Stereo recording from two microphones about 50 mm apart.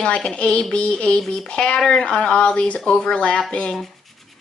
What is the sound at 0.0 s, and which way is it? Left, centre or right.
Speech, centre.